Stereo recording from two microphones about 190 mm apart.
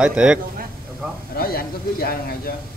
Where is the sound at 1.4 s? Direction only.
50° left (ahead or behind).